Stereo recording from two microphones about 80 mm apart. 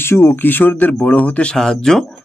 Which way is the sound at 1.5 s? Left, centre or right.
Centre.